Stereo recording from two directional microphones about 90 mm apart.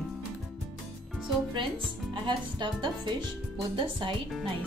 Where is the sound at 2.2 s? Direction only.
60° right (ahead or behind).